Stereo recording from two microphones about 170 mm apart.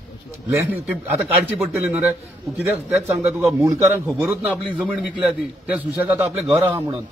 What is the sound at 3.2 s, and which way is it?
A man's voice, 10° right (ahead or behind).